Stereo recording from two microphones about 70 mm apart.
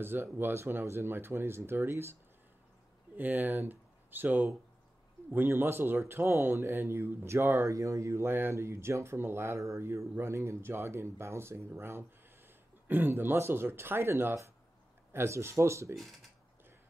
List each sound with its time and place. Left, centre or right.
0.0 s speech: right
3.2 s speech: right